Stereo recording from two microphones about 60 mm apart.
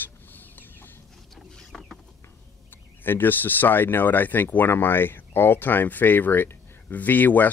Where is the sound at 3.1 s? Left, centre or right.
Left.